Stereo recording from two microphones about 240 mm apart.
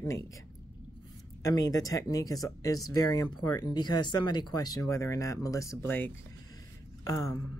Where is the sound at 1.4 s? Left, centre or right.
Centre.